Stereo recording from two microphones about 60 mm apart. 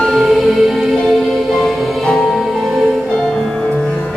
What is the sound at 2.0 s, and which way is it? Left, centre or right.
Music, centre.